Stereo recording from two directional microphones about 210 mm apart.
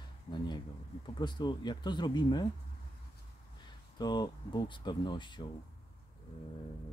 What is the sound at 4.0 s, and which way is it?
Speech, 20° left (ahead or behind).